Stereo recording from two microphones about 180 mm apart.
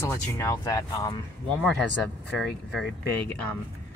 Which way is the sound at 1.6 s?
Centre (ahead or behind).